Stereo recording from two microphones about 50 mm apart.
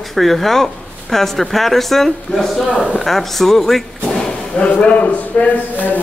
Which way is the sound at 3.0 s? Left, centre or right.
Centre.